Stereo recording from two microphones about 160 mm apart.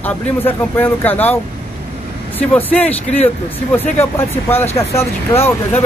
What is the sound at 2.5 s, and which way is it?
Speech, 10° left (ahead or behind).